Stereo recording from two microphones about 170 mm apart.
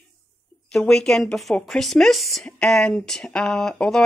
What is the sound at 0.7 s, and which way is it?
Speech, 5° left (ahead or behind).